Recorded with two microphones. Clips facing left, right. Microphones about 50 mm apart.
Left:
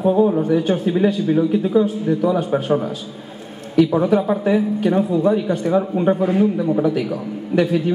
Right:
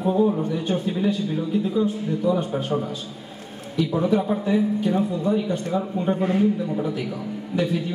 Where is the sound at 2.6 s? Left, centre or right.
Left.